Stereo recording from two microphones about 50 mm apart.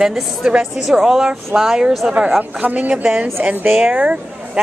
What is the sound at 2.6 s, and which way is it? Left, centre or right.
Speech, right.